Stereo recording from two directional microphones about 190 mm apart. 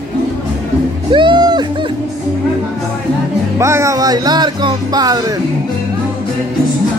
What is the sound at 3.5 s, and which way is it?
Speech, 15° right (ahead or behind).